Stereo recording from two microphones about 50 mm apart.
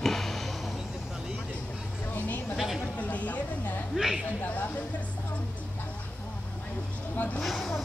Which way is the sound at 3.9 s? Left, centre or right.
Centre.